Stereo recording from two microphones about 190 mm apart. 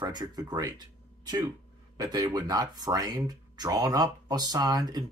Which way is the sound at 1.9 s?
20° right (ahead or behind).